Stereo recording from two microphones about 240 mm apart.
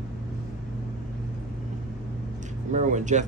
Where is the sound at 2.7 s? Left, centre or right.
Right.